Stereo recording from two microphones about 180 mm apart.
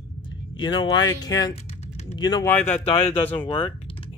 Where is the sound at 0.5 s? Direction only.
25° left (ahead or behind).